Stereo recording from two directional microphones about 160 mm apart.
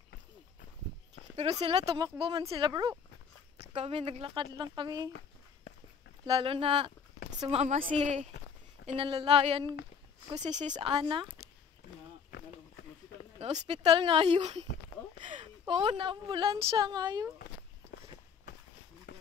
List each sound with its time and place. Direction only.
1.3 s speech: 40° right (ahead or behind)
1.9 s speech: 25° right (ahead or behind)
2.2 s speech: 35° right (ahead or behind)
3.6 s speech: 40° right (ahead or behind)
6.2 s a woman's voice: 30° right (ahead or behind)
10.4 s a woman's voice: 50° right (ahead or behind)
10.7 s speech: 35° right (ahead or behind)
13.4 s speech: 45° right (ahead or behind); by 17.3 s 25° right (ahead or behind)
19.1 s a sound: 90° left